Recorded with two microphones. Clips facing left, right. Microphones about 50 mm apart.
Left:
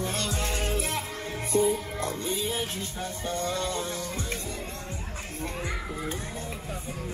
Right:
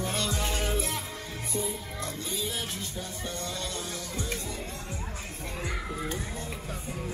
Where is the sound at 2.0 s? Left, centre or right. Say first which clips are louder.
Left 4 dB; left.